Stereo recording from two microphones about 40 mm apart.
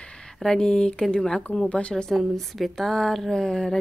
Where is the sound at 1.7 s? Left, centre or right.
Left.